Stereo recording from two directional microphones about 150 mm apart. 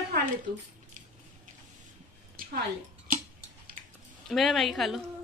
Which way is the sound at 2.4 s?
70° right (ahead or behind).